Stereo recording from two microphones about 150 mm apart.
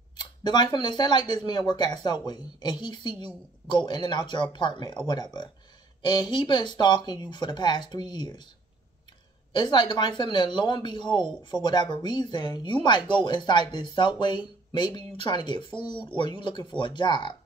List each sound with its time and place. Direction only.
0.2 s speech: 30° left (ahead or behind)
9.5 s speech: 30° left (ahead or behind)